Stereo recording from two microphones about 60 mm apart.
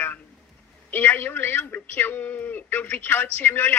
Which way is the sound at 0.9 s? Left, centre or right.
Left.